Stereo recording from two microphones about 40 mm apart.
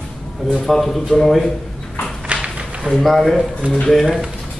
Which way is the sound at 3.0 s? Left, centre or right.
Centre.